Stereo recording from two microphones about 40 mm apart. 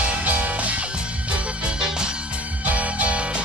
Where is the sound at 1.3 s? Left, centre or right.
Right.